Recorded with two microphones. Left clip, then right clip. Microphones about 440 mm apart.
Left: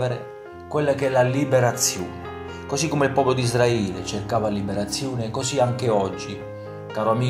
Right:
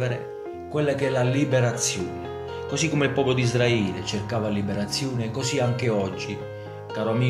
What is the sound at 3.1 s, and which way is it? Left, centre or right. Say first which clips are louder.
Speech: left 3 dB; left.